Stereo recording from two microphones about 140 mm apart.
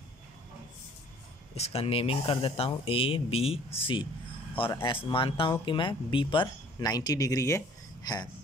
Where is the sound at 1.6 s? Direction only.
45° left (ahead or behind); by 7.6 s 25° left (ahead or behind).